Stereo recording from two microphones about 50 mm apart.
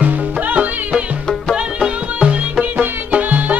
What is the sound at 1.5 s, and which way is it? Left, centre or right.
Music, centre.